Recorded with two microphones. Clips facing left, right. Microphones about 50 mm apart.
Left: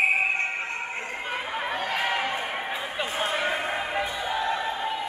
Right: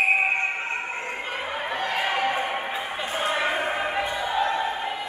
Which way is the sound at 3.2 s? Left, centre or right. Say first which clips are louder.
Right 4 dB; centre.